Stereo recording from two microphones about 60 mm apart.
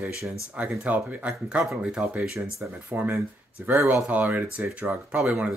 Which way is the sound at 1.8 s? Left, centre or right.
Centre.